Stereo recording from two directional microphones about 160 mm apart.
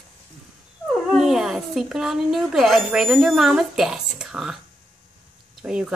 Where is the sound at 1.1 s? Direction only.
Centre (ahead or behind).